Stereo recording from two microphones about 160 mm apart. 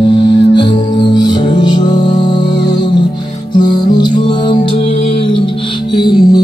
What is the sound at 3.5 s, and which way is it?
Music, 25° left (ahead or behind).